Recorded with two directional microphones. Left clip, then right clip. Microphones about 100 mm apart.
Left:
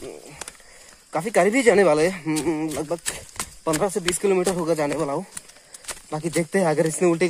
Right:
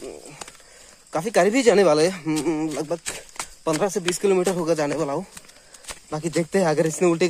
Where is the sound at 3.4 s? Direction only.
20° right (ahead or behind).